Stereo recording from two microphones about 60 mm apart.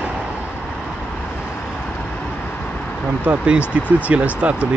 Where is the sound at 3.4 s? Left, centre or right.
Centre.